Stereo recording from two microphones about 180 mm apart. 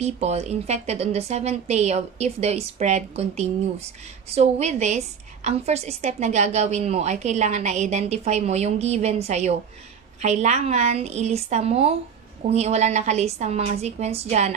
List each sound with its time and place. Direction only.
0.0 s a woman's voice: 40° right (ahead or behind)